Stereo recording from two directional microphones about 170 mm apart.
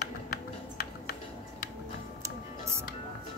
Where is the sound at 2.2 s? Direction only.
15° right (ahead or behind).